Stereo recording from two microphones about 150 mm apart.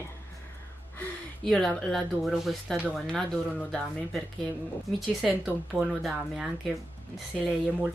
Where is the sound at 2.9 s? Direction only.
5° left (ahead or behind).